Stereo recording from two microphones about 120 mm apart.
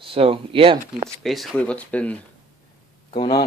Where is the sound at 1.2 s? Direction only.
Centre (ahead or behind).